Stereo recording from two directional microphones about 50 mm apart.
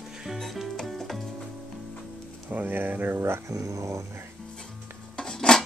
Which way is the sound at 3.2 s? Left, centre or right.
Right.